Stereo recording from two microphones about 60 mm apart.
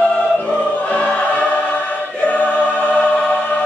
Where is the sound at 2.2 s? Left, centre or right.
Left.